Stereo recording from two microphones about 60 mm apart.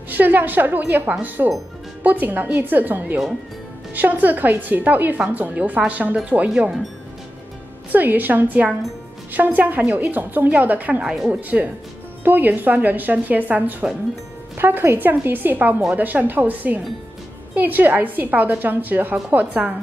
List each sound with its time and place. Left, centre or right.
0.1 s speech: right
7.9 s speech: right